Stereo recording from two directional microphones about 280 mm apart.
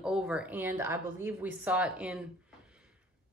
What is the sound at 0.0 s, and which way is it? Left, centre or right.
Speech, centre.